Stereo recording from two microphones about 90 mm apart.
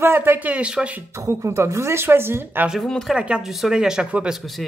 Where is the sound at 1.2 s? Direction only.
35° right (ahead or behind).